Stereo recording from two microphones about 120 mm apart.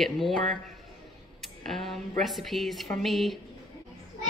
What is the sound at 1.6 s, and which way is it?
Speech, centre (ahead or behind).